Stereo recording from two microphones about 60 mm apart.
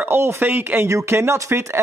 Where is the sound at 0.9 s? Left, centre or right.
Right.